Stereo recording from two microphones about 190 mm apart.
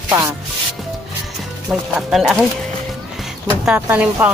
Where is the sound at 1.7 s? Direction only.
Centre (ahead or behind).